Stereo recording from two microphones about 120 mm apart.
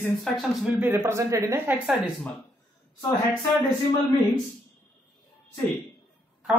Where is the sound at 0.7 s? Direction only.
15° right (ahead or behind).